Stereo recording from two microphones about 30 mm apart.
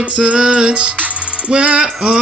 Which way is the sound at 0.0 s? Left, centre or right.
Right.